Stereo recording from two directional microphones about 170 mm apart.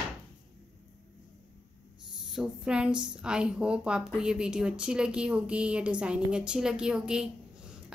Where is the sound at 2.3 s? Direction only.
5° right (ahead or behind).